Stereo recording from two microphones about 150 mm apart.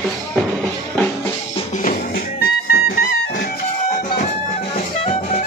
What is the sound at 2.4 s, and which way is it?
Music, 90° left.